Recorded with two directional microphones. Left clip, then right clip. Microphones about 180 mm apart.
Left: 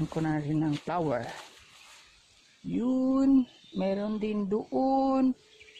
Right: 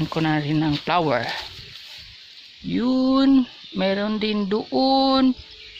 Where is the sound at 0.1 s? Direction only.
10° right (ahead or behind).